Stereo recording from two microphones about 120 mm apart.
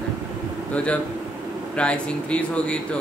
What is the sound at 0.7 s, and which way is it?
A man's voice, 10° left (ahead or behind).